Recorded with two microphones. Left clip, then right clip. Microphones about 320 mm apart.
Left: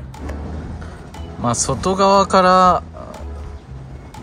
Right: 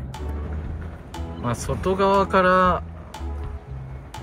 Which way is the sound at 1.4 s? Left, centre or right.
Centre.